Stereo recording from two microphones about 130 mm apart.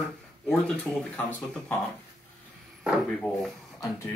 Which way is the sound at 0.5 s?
5° left (ahead or behind).